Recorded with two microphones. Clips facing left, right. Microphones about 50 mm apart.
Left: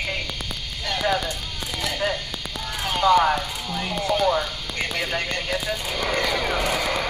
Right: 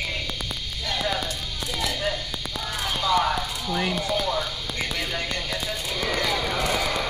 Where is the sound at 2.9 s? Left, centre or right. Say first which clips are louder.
Left 7 dB; left.